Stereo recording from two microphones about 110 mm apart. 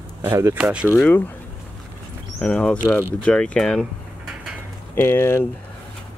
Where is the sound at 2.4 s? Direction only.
10° left (ahead or behind).